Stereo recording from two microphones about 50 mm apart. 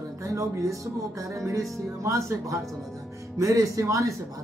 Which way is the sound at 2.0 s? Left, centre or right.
Right.